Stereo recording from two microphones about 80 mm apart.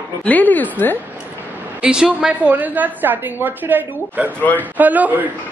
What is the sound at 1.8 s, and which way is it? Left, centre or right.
A woman's voice, centre.